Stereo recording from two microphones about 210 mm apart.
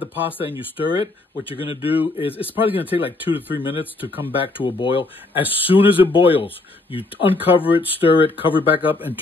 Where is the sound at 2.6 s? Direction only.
10° right (ahead or behind).